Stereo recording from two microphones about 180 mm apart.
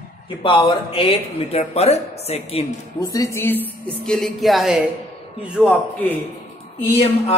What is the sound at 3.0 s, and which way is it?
A man's voice, 20° left (ahead or behind).